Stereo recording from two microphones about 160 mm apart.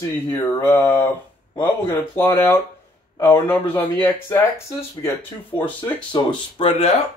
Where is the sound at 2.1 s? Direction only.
15° left (ahead or behind).